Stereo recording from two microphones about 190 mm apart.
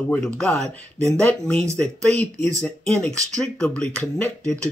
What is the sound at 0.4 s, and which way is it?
Speech, 5° left (ahead or behind).